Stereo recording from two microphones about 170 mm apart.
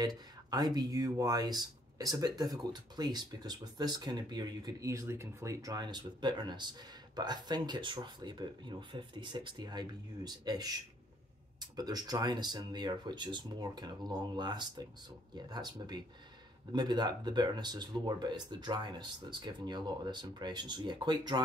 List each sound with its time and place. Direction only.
0.5 s speech: 25° right (ahead or behind)